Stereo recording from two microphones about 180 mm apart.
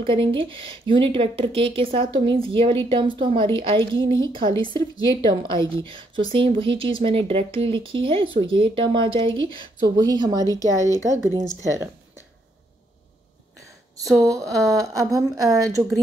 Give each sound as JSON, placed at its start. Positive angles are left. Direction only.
{"t": 0.0, "sound": "speech", "side_deg": -30}
{"t": 14.2, "sound": "speech", "side_deg": -15}